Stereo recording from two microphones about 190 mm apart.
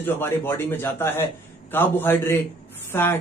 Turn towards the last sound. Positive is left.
turn(degrees=10)  # may be behind; listen again after turning